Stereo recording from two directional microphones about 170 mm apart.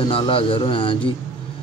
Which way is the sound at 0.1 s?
30° left (ahead or behind).